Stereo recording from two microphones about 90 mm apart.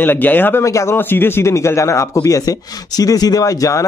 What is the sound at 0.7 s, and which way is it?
Speech, 35° left (ahead or behind).